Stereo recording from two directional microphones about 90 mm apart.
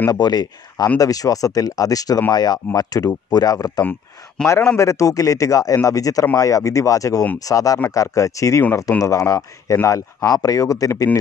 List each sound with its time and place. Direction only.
0.1 s speech: 50° left (ahead or behind)
4.5 s speech: 30° left (ahead or behind)